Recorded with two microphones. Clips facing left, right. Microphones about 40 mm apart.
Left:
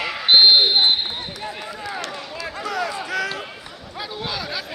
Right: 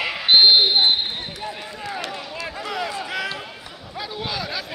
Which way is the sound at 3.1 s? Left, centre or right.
Centre.